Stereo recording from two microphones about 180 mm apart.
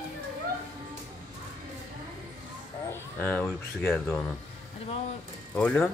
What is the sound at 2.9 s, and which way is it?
Speech, 10° left (ahead or behind).